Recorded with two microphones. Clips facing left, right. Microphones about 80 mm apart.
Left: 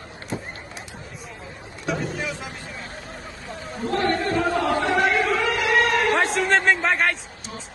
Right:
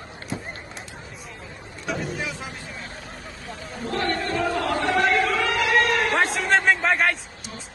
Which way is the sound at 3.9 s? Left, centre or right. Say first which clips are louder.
Left 3 dB; left.